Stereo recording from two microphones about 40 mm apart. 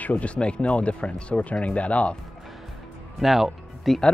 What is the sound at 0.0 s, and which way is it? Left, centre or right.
Speech, left.